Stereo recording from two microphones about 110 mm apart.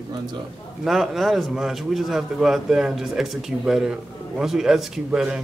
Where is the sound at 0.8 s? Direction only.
Centre (ahead or behind).